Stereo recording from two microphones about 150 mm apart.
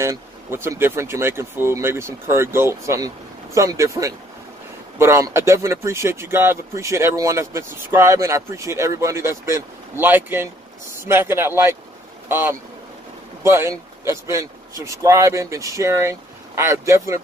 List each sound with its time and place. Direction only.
0.0 s speech: 15° right (ahead or behind)